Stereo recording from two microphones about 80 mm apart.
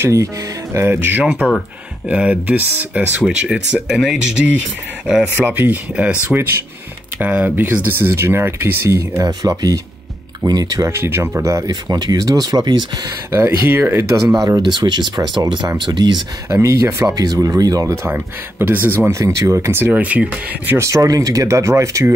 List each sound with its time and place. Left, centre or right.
0.0 s speech: right
0.7 s speech: right
1.2 s speech: centre
5.3 s speech: right
10.9 s speech: right
11.7 s speech: right
13.3 s speech: right
14.6 s speech: right
16.6 s speech: right
17.1 s speech: right
18.1 s speech: right
20.0 s speech: centre
20.7 s speech: right